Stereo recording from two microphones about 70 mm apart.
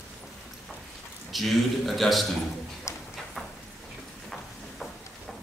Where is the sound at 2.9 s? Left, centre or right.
Left.